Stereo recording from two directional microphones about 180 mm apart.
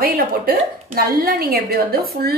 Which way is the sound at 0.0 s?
55° right (ahead or behind).